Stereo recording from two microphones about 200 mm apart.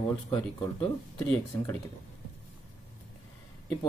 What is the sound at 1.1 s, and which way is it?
Speech, 5° left (ahead or behind).